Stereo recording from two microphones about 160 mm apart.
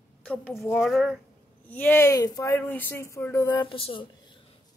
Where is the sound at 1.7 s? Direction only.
10° left (ahead or behind).